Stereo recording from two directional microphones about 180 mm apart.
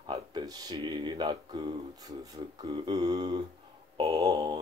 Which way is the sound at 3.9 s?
25° right (ahead or behind).